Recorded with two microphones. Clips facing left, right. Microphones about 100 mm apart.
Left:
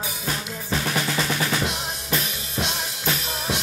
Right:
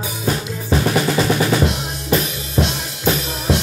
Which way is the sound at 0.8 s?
50° right (ahead or behind).